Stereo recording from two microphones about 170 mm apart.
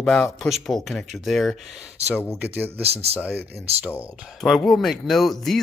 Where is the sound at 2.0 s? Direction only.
40° right (ahead or behind).